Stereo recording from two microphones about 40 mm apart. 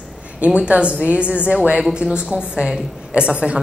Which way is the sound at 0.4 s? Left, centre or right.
Right.